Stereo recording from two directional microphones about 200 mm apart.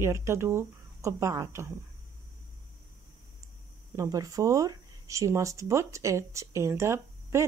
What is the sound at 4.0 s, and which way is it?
Speech, 15° right (ahead or behind).